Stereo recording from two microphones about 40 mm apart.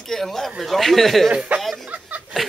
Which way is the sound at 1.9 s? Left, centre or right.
Right.